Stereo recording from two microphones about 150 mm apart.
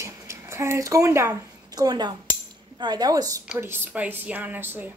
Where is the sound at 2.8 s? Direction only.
25° right (ahead or behind).